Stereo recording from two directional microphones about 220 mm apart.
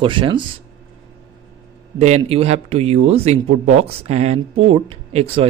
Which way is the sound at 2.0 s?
30° right (ahead or behind).